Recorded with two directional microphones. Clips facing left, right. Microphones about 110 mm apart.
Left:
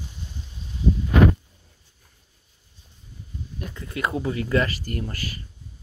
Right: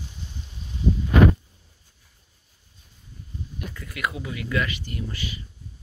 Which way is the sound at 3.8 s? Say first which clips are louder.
Left 4 dB; 30° left (ahead or behind).